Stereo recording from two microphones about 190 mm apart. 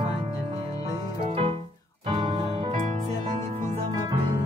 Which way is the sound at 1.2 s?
30° right (ahead or behind).